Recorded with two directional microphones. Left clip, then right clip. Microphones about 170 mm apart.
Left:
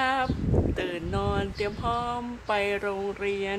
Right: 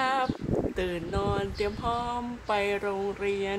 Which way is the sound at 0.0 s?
Centre (ahead or behind).